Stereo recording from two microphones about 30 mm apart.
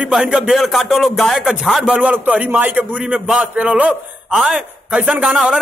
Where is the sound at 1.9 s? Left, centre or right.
Right.